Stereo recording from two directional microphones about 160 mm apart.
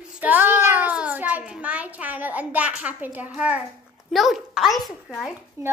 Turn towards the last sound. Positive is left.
turn(degrees=-20)  # may be behind; listen again after turning